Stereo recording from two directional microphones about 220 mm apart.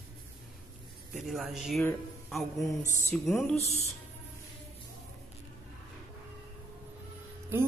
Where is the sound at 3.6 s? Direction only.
30° left (ahead or behind).